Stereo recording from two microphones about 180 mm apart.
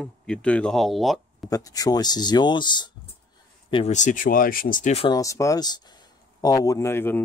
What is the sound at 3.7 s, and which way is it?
Speech, 35° left (ahead or behind).